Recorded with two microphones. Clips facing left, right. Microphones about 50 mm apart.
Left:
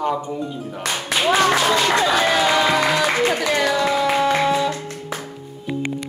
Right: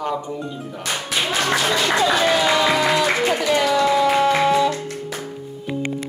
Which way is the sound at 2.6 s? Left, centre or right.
Centre.